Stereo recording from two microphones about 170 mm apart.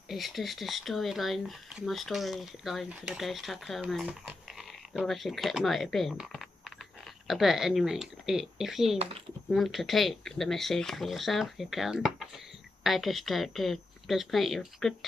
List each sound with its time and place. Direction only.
0.1 s speech: centre (ahead or behind)
8.9 s speech: 35° right (ahead or behind)
9.5 s speech: centre (ahead or behind)